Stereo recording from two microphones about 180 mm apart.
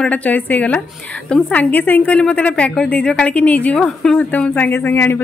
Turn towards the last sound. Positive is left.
turn(degrees=10)  # may be behind; listen again after turning